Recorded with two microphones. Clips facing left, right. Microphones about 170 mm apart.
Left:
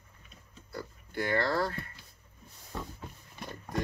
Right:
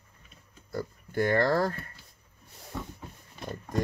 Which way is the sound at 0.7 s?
45° right (ahead or behind).